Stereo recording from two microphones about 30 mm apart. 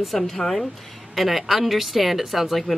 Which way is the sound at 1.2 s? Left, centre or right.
Centre.